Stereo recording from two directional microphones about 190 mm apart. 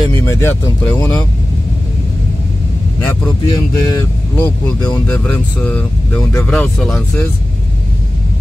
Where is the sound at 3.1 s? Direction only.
20° left (ahead or behind).